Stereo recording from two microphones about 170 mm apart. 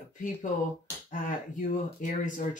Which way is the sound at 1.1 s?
50° left (ahead or behind).